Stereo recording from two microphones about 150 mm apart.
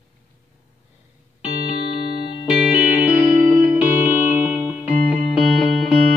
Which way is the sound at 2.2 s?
30° left (ahead or behind).